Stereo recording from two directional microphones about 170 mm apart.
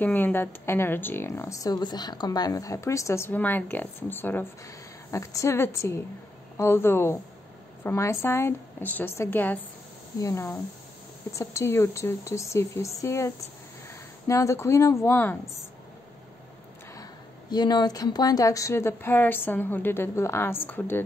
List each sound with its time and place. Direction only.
0.0 s speech: 10° left (ahead or behind)
16.9 s speech: 25° left (ahead or behind)